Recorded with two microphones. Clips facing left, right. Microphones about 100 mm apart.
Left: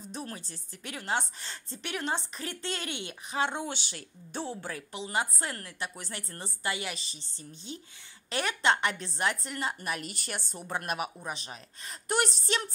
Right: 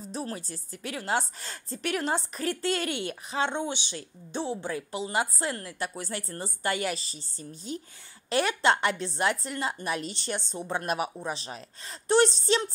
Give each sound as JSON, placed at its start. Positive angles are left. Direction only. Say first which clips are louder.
{"t": 0.1, "sound": "a woman's voice", "louder": "right 5 dB", "side_deg": -35}
{"t": 4.9, "sound": "a woman's voice", "louder": "right 2 dB", "side_deg": -35}
{"t": 5.8, "sound": "a woman's voice", "louder": "right 5 dB", "side_deg": -40}